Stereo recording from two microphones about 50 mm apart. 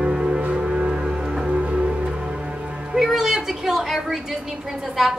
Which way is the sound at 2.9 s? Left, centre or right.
Centre.